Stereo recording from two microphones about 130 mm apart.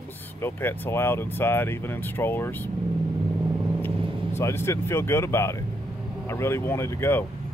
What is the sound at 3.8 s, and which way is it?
Speech, 20° left (ahead or behind).